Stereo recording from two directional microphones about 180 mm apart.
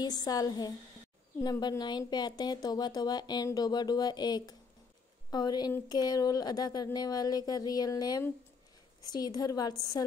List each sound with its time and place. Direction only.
0.0 s a woman's voice: 20° left (ahead or behind)